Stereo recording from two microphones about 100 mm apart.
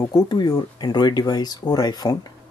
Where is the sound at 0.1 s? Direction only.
45° left (ahead or behind).